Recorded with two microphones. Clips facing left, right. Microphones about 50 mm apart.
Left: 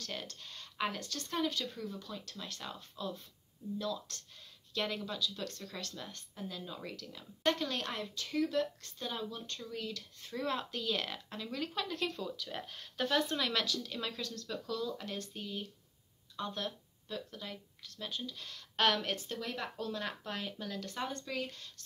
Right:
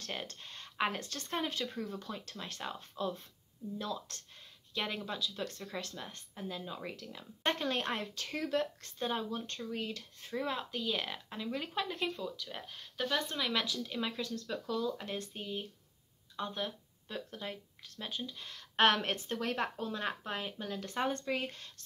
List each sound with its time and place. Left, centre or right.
0.0 s a woman's voice: right
10.4 s speech: centre
12.1 s speech: centre
13.5 s a woman's voice: centre
17.1 s a woman's voice: right
18.9 s speech: right
19.8 s a woman's voice: right